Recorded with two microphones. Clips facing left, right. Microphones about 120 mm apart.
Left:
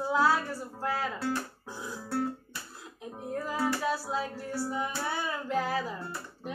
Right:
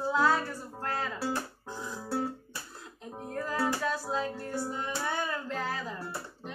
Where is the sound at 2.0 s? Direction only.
15° right (ahead or behind).